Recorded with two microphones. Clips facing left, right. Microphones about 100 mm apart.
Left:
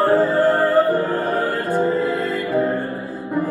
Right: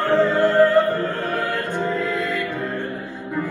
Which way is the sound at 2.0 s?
40° left (ahead or behind).